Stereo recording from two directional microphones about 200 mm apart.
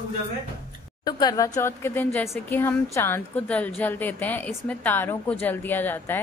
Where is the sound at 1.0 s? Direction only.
20° left (ahead or behind).